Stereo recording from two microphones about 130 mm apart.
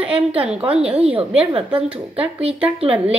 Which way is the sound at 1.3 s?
45° right (ahead or behind).